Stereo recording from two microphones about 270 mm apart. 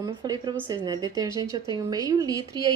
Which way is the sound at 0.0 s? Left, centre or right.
Centre.